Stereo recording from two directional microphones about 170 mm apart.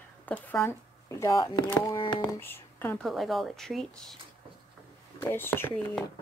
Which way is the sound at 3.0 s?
Centre (ahead or behind).